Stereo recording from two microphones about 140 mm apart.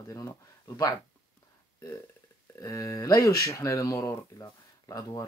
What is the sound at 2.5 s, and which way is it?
Speech, 25° left (ahead or behind).